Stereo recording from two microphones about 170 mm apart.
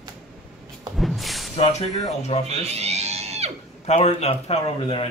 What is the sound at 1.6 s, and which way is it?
Speech, 40° left (ahead or behind).